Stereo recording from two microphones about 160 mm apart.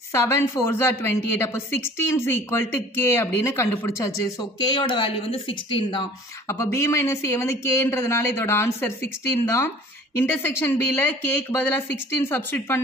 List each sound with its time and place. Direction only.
0.1 s a woman's voice: 15° left (ahead or behind)
4.4 s speech: 25° left (ahead or behind)
6.4 s a woman's voice: 15° left (ahead or behind)